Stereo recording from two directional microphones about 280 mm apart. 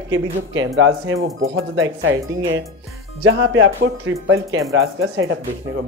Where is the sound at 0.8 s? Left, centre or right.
Right.